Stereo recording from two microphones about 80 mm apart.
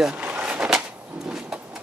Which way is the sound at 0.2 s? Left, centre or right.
Centre.